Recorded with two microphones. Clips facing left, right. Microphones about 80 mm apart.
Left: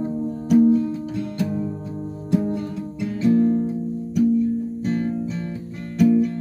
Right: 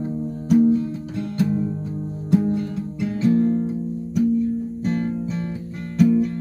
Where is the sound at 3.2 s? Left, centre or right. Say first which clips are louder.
Left 1 dB; centre.